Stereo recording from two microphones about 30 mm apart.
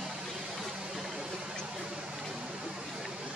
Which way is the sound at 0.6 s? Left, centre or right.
Centre.